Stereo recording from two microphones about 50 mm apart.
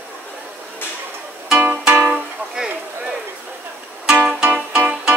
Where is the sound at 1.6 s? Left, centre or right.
Right.